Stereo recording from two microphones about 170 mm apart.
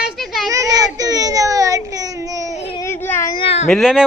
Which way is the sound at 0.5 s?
20° right (ahead or behind).